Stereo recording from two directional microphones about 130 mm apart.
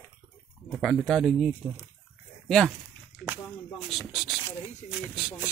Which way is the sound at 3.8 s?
5° right (ahead or behind).